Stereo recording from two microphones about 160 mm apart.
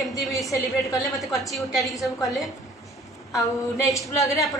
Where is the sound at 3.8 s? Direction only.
20° left (ahead or behind).